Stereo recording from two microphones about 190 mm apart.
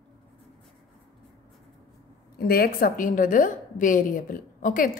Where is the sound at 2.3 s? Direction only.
55° left (ahead or behind).